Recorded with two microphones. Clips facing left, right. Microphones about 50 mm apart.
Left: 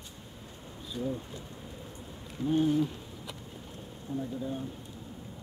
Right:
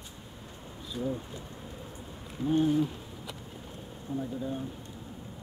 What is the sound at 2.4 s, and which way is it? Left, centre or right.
Speech, centre.